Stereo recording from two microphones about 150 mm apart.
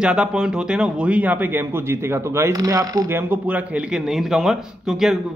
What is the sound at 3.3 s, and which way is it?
A man's voice, 10° right (ahead or behind).